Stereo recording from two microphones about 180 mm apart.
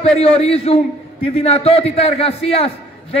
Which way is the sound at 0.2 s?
35° left (ahead or behind).